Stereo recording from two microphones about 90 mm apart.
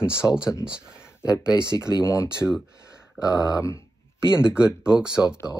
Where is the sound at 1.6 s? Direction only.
35° left (ahead or behind).